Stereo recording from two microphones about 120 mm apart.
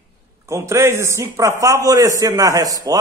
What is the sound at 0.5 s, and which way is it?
A man's voice, 25° right (ahead or behind).